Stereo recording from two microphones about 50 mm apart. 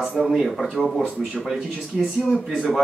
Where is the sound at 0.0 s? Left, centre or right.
Centre.